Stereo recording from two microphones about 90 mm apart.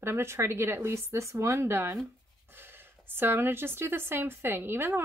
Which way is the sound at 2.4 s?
25° right (ahead or behind).